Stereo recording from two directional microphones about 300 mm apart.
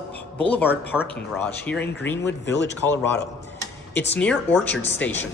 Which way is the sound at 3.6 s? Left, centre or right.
Centre.